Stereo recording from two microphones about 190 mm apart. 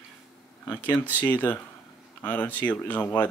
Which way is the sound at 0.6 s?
10° left (ahead or behind).